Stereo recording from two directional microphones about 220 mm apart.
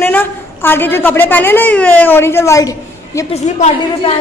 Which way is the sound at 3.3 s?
30° left (ahead or behind).